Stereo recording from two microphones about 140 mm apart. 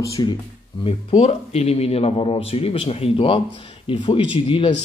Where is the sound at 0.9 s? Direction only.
40° left (ahead or behind).